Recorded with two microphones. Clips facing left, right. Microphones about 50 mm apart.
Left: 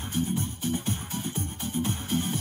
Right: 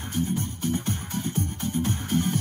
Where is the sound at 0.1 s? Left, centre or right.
Right.